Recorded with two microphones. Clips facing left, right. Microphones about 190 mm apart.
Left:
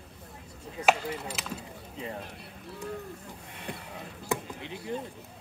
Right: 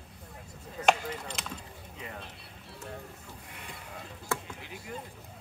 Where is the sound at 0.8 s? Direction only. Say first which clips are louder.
Left 1 dB; 5° left (ahead or behind).